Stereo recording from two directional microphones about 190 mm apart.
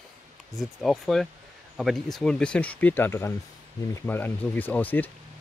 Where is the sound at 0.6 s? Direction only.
Centre (ahead or behind).